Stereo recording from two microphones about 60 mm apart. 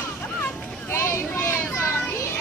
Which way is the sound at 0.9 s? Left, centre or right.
Left.